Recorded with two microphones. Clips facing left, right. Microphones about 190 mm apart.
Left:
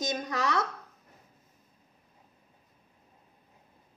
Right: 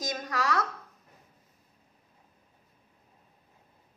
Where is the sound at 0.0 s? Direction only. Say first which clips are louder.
Left 1 dB; 25° left (ahead or behind).